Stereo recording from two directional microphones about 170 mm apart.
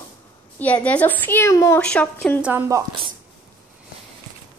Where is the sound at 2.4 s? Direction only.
15° right (ahead or behind).